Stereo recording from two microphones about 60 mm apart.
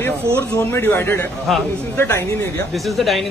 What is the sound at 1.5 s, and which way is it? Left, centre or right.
Speech, centre.